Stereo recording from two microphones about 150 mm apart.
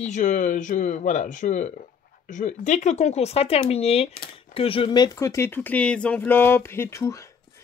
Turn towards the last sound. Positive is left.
turn(degrees=20)  # may be behind; listen again after turning